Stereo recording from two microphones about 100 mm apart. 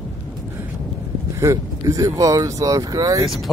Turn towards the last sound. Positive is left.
turn(degrees=0)  # may be behind; listen again after turning